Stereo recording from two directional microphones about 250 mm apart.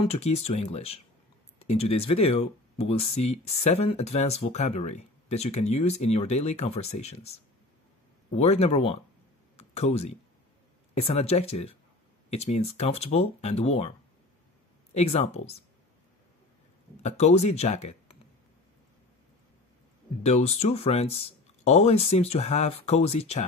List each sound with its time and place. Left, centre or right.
0.1 s speech: left
15.0 s speech: left
17.0 s speech: left
20.2 s speech: left